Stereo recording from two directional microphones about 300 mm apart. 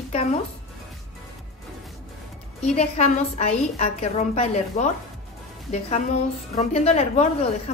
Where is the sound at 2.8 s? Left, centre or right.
Left.